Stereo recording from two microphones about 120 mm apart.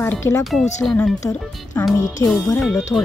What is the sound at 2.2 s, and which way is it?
Speech, 20° left (ahead or behind).